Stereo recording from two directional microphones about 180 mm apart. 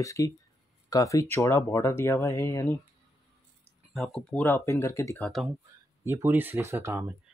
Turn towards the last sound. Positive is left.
turn(degrees=-15)  # may be behind; listen again after turning